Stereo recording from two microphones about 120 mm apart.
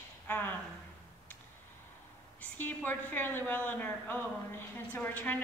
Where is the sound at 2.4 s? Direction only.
15° left (ahead or behind).